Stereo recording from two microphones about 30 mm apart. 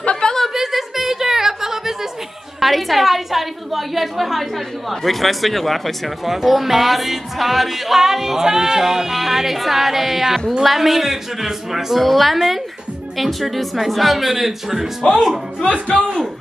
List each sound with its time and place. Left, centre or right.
0.0 s a sound: left
0.6 s a sound: centre
2.6 s a woman's voice: centre
6.2 s speech: centre
8.0 s music: centre
12.0 s speech: centre
15.6 s speech: left